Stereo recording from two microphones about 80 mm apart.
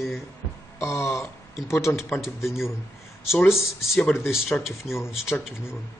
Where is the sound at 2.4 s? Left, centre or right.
Centre.